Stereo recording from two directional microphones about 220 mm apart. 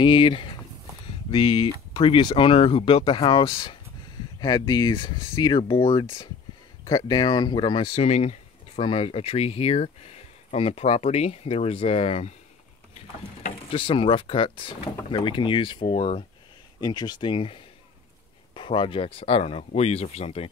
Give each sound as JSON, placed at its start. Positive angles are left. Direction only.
{"t": 0.0, "sound": "speech", "side_deg": 25}